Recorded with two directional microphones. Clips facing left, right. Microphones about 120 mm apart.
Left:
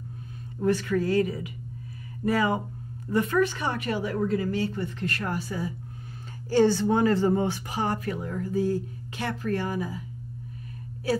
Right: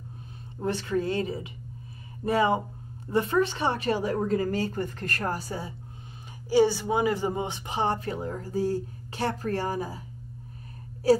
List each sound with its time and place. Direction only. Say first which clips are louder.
0.6 s a woman's voice: left 3 dB; 25° right (ahead or behind)
6.5 s speech: left 1 dB; 10° right (ahead or behind); by 10.0 s 35° right (ahead or behind)
11.0 s a woman's voice: right 6 dB; 35° right (ahead or behind)